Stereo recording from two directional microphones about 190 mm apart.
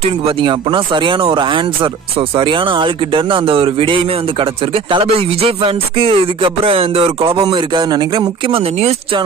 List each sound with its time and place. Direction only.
0.0 s speech: 30° right (ahead or behind)